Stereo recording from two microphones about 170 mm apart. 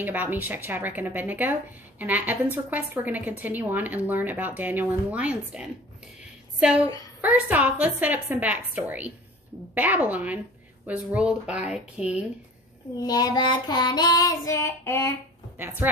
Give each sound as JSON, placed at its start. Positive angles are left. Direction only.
{"t": 0.0, "sound": "speech", "side_deg": -10}
{"t": 7.2, "sound": "speech", "side_deg": -10}
{"t": 12.9, "sound": "child singing", "side_deg": 20}
{"t": 15.5, "sound": "a woman's voice", "side_deg": -10}